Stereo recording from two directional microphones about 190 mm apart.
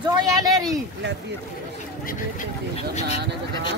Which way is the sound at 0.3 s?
20° right (ahead or behind).